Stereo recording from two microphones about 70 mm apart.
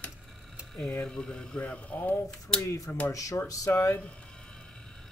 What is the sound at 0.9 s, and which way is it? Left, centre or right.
Speech, centre.